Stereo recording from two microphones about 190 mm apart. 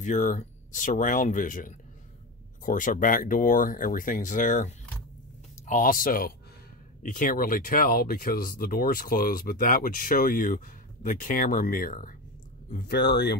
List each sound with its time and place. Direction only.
0.0 s speech: 40° left (ahead or behind)
12.7 s speech: 55° left (ahead or behind)